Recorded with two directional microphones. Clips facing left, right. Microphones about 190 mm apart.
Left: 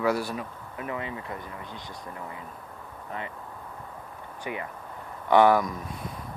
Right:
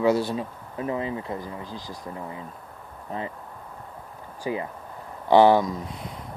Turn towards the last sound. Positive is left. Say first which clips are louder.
# right 3 dB
turn(degrees=-20)  # may be behind; listen again after turning